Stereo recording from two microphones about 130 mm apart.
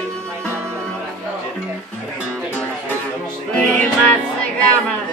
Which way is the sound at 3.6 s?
10° left (ahead or behind).